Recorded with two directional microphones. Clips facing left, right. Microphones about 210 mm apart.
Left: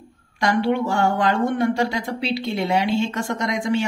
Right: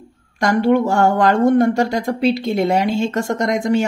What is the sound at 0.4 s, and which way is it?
Speech, 45° right (ahead or behind).